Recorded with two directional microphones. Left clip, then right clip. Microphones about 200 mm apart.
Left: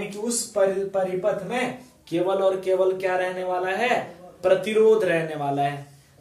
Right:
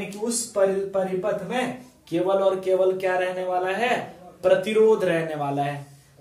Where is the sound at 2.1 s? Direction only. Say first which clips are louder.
Right 1 dB; 10° right (ahead or behind).